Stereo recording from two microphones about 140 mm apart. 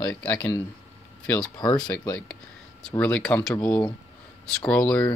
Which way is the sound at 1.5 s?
30° left (ahead or behind).